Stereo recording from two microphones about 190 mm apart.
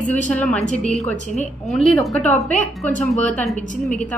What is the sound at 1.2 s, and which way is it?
Speech, 40° left (ahead or behind).